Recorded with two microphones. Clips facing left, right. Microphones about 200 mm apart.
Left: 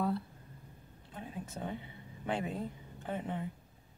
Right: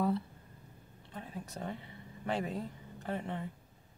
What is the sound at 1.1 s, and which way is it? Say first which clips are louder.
Speech: left 1 dB; 5° left (ahead or behind).